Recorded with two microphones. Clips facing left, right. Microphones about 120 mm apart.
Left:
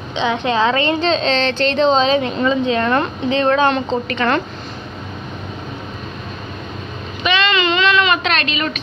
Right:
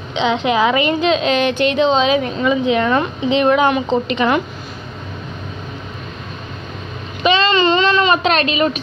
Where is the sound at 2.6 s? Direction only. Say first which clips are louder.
Right 1 dB; 15° right (ahead or behind).